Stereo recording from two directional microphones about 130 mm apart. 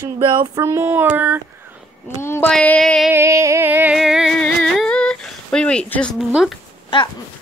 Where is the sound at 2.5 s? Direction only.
5° left (ahead or behind).